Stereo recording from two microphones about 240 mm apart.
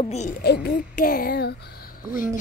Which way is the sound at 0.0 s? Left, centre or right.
Left.